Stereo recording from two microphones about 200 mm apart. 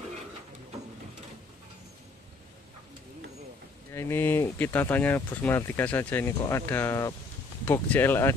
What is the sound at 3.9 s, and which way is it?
Speech, 10° left (ahead or behind).